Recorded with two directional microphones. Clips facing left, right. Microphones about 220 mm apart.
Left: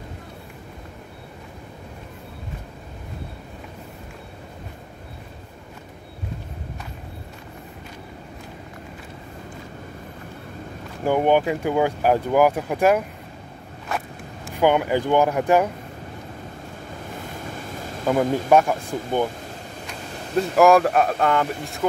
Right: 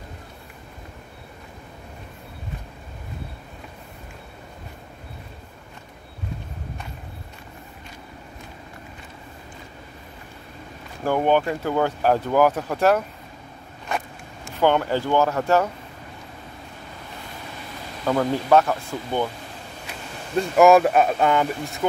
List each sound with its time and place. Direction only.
11.1 s speech: 15° left (ahead or behind)
13.8 s zipper: 5° left (ahead or behind)
18.0 s speech: 20° left (ahead or behind)
20.3 s speech: centre (ahead or behind)